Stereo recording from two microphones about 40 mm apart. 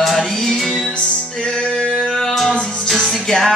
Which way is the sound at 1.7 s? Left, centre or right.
Centre.